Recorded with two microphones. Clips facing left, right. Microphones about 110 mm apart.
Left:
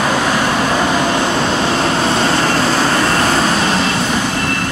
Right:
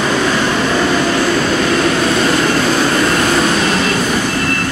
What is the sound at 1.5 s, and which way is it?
Vehicle, 30° left (ahead or behind).